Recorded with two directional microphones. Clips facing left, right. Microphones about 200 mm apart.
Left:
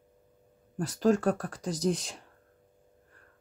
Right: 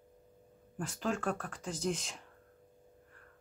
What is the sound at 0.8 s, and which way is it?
Speech, 40° left (ahead or behind).